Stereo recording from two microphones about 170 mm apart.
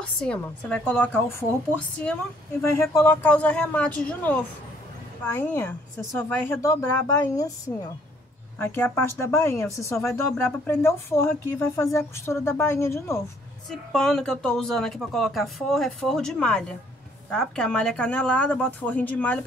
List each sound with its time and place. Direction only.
0.3 s speech: 5° left (ahead or behind)
2.7 s a woman's voice: 15° left (ahead or behind)
13.7 s speech: 5° left (ahead or behind)